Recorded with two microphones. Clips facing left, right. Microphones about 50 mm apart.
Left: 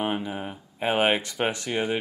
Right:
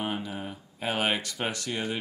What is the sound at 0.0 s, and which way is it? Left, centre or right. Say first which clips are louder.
Speech: left 4 dB; left.